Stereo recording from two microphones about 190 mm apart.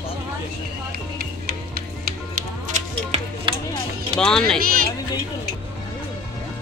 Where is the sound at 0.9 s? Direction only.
55° right (ahead or behind).